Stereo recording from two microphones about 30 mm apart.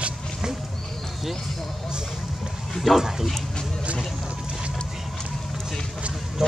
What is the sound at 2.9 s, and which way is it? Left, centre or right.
Speech, centre.